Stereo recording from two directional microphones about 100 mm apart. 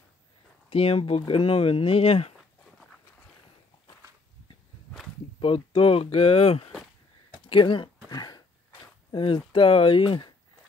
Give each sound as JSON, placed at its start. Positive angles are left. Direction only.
{"t": 0.7, "sound": "speech", "side_deg": 75}
{"t": 5.4, "sound": "speech", "side_deg": 65}
{"t": 7.4, "sound": "speech", "side_deg": 55}
{"t": 8.1, "sound": "a sound", "side_deg": 45}
{"t": 9.1, "sound": "speech", "side_deg": 55}